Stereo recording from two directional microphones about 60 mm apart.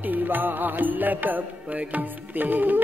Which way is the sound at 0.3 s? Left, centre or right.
Right.